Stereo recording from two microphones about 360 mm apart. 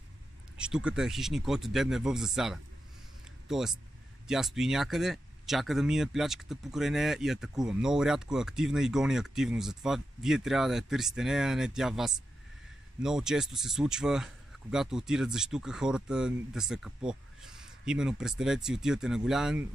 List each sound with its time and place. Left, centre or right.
0.6 s speech: centre